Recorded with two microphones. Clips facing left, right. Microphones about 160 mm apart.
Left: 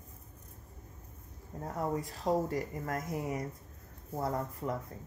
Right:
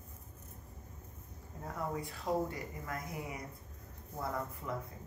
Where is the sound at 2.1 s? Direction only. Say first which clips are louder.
Left 3 dB; 40° left (ahead or behind).